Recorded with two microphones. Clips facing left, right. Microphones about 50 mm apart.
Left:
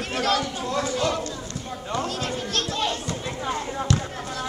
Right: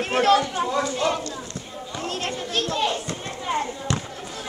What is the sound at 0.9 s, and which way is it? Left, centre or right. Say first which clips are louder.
Speech: right 1 dB; centre.